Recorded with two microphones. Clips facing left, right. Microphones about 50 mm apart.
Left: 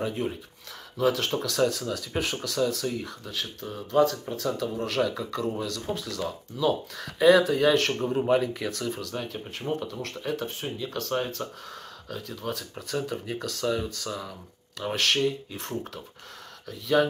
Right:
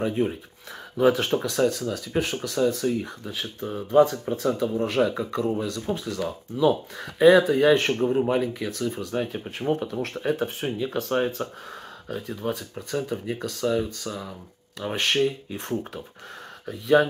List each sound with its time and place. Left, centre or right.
0.0 s speech: centre
0.9 s speech: right; by 9.0 s centre
9.0 s speech: right
12.7 s speech: centre
16.6 s speech: right